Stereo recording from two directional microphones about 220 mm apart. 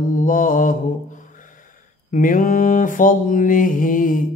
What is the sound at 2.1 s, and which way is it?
Mantra, 40° left (ahead or behind).